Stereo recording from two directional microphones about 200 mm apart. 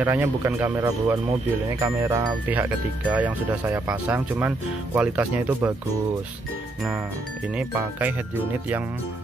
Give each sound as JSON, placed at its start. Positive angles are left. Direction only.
{"t": 0.0, "sound": "speech", "side_deg": -10}
{"t": 7.5, "sound": "speech", "side_deg": -10}